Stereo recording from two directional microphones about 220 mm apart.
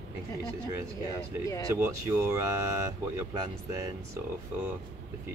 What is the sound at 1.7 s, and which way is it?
Speech, 10° right (ahead or behind).